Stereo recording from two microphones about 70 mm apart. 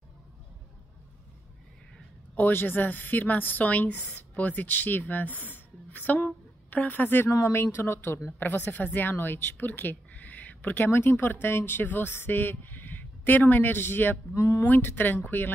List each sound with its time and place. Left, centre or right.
2.3 s speech: left
5.5 s a sound: left
7.2 s speech: left
7.5 s speech: left
8.4 s speech: left
14.4 s speech: left
14.7 s speech: left